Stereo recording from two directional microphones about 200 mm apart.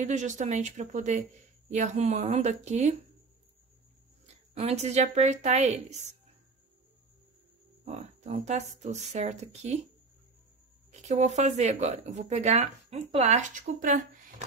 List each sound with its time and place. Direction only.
0.0 s speech: 35° right (ahead or behind)
4.6 s speech: 35° right (ahead or behind)
7.8 s speech: 35° right (ahead or behind)
10.9 s speech: 35° right (ahead or behind)